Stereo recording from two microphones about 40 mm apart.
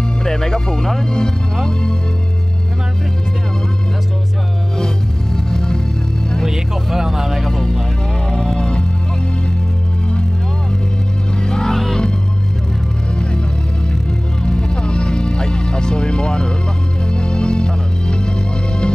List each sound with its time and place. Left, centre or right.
0.2 s speech: centre
4.7 s music: centre
6.4 s speech: centre
7.5 s speech: centre
8.3 s music: centre
11.3 s music: centre
14.4 s music: centre